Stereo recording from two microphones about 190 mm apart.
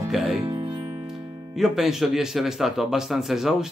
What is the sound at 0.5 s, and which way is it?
Music, 20° right (ahead or behind).